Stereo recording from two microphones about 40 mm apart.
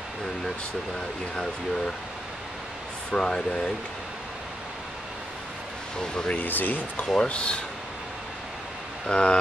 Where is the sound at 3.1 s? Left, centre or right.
Left.